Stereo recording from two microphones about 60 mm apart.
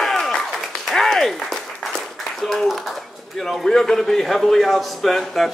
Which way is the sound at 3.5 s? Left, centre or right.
Centre.